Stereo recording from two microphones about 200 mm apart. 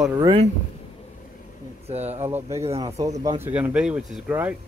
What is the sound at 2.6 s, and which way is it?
Speech, 30° right (ahead or behind).